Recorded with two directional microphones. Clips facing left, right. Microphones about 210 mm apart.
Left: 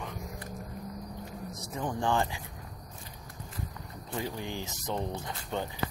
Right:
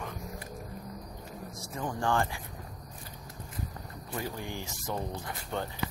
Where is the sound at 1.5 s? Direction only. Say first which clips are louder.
Left 1 dB; 20° left (ahead or behind).